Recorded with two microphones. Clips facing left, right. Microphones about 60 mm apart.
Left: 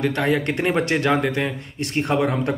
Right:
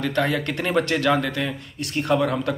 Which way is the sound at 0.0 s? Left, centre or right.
Left.